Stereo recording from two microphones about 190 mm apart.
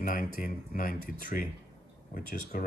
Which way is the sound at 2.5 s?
45° left (ahead or behind).